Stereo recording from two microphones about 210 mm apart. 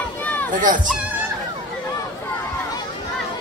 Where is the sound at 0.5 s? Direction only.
40° right (ahead or behind).